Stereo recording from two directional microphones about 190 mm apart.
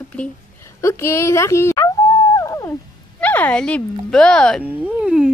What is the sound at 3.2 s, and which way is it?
Speech, 10° left (ahead or behind).